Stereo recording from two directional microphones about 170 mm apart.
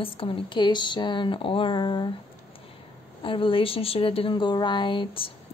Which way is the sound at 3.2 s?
30° left (ahead or behind).